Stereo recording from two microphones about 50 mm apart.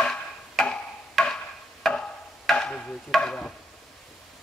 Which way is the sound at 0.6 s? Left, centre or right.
Centre.